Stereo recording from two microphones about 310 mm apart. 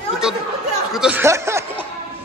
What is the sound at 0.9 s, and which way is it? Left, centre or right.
Snicker, centre.